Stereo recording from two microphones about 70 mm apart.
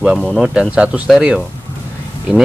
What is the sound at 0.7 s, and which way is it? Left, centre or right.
Speech, centre.